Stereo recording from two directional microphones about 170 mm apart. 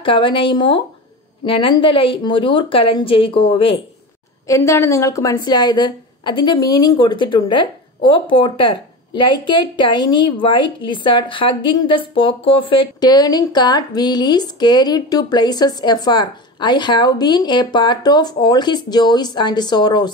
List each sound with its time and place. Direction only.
0.0 s a woman's voice: 30° left (ahead or behind)
4.5 s a woman's voice: 15° left (ahead or behind)